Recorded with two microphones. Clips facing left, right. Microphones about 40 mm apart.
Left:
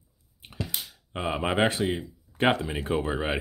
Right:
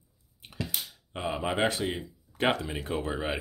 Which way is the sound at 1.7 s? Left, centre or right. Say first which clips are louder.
Left 4 dB; centre.